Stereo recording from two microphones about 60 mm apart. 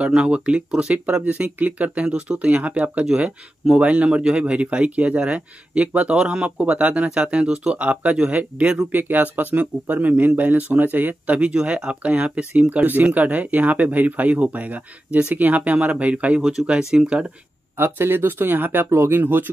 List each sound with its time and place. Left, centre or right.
0.0 s speech: centre
16.3 s speech: centre
16.6 s speech: centre
17.7 s speech: right